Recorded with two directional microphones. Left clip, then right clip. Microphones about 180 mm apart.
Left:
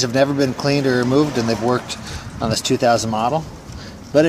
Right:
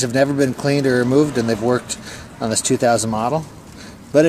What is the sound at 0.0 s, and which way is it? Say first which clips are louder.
Speech: even; 15° right (ahead or behind).